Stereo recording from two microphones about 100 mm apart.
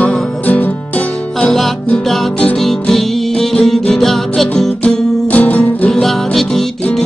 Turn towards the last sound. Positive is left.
turn(degrees=5)  # may be behind; listen again after turning